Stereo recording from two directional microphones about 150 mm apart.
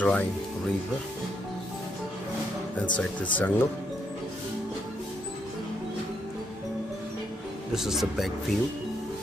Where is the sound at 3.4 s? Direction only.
10° left (ahead or behind).